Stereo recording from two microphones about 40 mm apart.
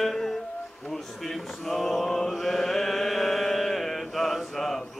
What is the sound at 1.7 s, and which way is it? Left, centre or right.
Chant, centre.